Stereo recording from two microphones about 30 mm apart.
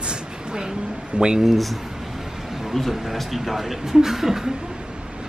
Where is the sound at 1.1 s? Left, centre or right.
Right.